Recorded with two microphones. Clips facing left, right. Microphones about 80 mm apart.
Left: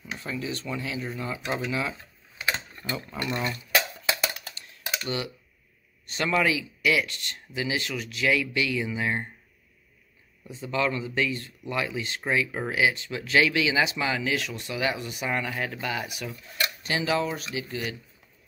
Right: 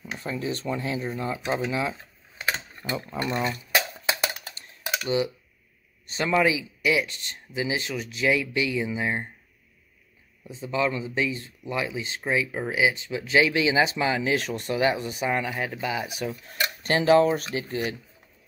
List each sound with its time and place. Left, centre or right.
0.2 s speech: right
4.2 s a sound: right
4.8 s typing: centre
6.0 s speech: right
10.5 s speech: centre
12.4 s speech: centre
12.7 s speech: centre
16.8 s speech: right